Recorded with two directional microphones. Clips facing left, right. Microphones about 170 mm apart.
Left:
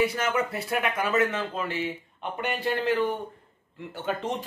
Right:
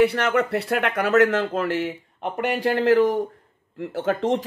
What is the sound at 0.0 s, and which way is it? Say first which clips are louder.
Speech: right 6 dB; 65° right (ahead or behind).